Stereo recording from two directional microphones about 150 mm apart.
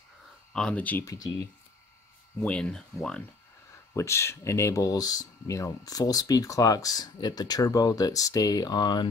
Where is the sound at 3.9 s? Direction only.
20° left (ahead or behind).